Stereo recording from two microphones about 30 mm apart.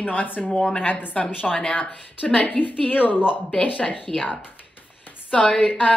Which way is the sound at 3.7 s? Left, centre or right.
Left.